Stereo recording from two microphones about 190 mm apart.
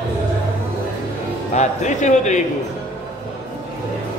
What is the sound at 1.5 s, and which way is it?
Speech, 40° left (ahead or behind).